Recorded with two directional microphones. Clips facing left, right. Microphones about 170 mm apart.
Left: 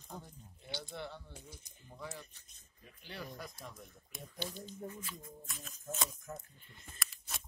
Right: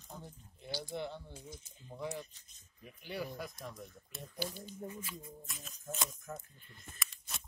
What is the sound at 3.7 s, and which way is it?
Speech, 5° left (ahead or behind).